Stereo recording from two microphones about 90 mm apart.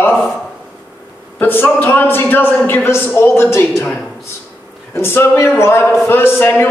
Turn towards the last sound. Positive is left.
turn(degrees=20)  # may be behind; listen again after turning